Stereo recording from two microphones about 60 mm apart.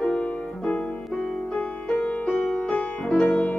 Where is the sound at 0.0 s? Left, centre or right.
Left.